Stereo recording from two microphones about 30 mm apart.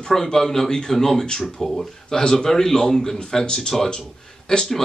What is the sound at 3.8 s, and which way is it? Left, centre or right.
Speech, left.